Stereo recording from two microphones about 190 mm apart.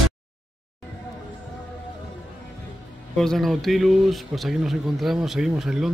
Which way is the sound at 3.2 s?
Centre (ahead or behind).